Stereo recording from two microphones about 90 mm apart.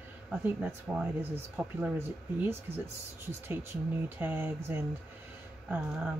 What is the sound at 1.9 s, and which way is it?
Speech, 25° right (ahead or behind).